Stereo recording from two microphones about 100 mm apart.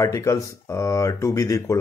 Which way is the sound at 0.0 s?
30° left (ahead or behind).